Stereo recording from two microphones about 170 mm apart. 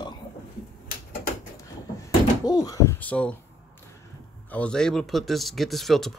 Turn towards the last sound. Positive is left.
turn(degrees=0)  # may be behind; listen again after turning